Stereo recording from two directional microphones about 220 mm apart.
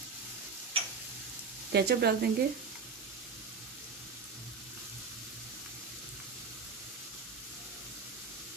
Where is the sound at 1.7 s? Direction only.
50° right (ahead or behind).